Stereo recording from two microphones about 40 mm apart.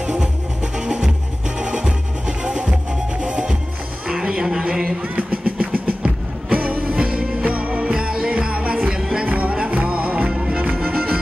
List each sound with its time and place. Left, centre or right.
0.7 s music: centre
5.0 s music: right
10.3 s music: centre
10.9 s music: right